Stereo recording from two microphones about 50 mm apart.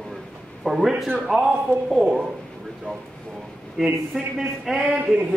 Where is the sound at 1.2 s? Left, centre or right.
Centre.